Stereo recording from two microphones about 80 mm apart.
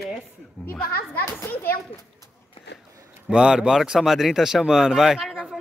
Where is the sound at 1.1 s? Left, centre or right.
Left.